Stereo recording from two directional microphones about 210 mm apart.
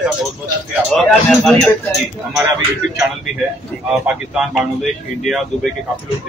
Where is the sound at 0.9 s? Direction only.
Centre (ahead or behind).